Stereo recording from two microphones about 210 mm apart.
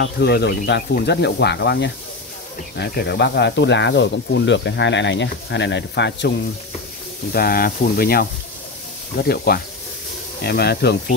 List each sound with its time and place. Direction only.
0.0 s speech: 55° left (ahead or behind)
7.3 s speech: 45° left (ahead or behind)